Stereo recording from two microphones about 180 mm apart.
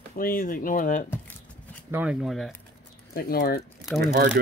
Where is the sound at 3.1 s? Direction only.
55° left (ahead or behind).